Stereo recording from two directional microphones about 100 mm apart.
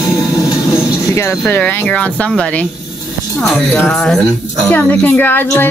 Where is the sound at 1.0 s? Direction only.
30° left (ahead or behind).